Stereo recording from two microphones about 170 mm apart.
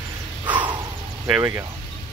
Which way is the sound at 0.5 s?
25° right (ahead or behind).